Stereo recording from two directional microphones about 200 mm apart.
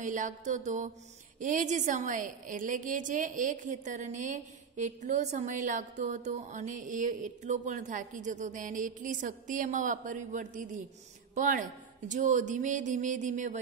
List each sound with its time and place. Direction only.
0.0 s mantra: 40° right (ahead or behind)
0.5 s a woman's voice: 35° right (ahead or behind)